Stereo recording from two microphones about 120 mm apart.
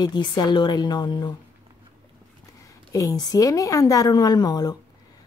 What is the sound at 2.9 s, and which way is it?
A woman's voice, 30° left (ahead or behind).